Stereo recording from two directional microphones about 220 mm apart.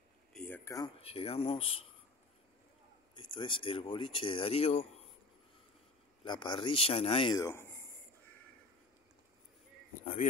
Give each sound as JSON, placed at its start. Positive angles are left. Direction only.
{"t": 0.3, "sound": "speech", "side_deg": 5}
{"t": 3.2, "sound": "speech", "side_deg": 20}
{"t": 6.2, "sound": "speech", "side_deg": 20}